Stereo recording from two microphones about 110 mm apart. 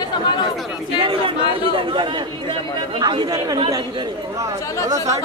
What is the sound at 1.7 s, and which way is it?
A man's voice, 50° right (ahead or behind).